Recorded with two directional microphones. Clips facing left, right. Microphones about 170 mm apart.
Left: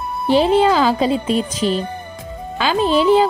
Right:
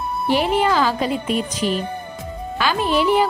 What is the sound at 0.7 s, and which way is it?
A woman's voice, 25° left (ahead or behind).